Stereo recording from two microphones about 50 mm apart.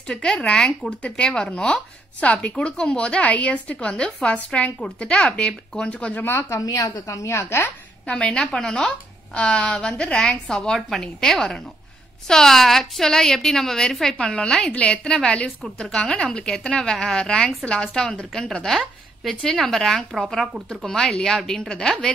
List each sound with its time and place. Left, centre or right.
0.1 s a woman's voice: centre
6.5 s a woman's voice: left
8.1 s a woman's voice: centre
10.2 s a woman's voice: centre
19.4 s speech: centre
20.8 s a woman's voice: centre